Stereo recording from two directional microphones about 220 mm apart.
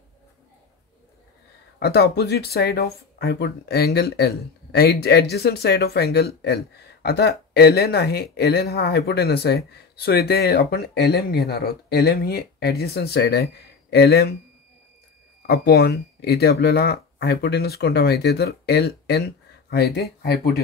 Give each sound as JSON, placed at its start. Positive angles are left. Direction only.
{"t": 1.8, "sound": "speech", "side_deg": 45}
{"t": 15.4, "sound": "speech", "side_deg": 45}